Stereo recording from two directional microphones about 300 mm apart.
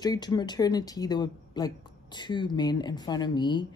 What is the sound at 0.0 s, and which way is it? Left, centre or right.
Speech, centre.